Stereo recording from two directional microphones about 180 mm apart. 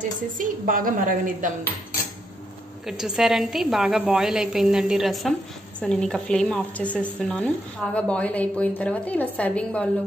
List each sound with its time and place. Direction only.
0.4 s a woman's voice: 50° right (ahead or behind)
2.9 s a woman's voice: 5° right (ahead or behind)